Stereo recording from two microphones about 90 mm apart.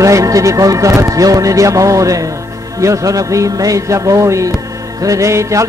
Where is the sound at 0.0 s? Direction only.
40° right (ahead or behind).